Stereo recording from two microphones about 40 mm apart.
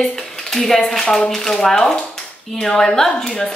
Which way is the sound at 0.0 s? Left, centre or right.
Centre.